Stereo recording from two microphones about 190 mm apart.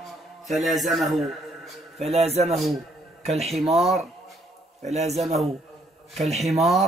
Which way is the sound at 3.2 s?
35° right (ahead or behind).